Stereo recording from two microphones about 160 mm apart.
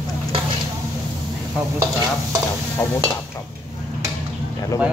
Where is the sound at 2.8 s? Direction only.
20° left (ahead or behind).